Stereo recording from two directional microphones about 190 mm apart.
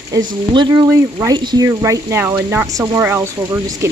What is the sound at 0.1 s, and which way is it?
Speech, 15° right (ahead or behind).